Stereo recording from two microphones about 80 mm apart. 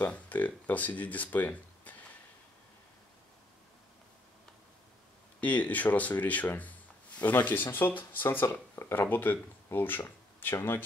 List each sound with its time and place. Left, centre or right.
0.0 s speech: centre
5.4 s speech: centre